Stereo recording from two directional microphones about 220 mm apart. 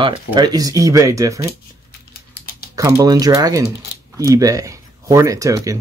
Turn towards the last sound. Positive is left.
turn(degrees=-15)  # may be behind; listen again after turning